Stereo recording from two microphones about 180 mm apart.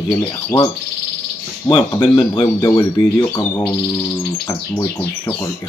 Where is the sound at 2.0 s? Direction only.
25° left (ahead or behind).